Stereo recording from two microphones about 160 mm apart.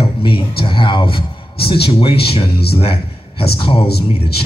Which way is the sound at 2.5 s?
80° left.